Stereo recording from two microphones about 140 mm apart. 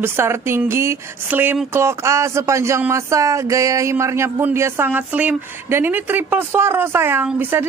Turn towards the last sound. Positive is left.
turn(degrees=-15)  # may be behind; listen again after turning